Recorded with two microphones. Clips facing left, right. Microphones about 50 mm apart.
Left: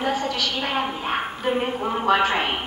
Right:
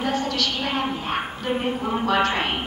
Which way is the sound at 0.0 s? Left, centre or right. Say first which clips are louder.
Even; centre.